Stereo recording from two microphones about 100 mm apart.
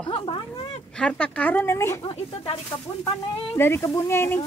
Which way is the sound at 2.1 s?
80° left.